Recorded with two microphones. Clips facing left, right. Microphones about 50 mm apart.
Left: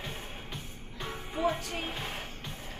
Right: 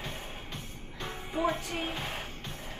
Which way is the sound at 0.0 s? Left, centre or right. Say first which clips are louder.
Even; centre.